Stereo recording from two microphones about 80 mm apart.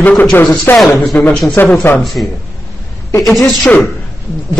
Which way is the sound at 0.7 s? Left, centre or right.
Left.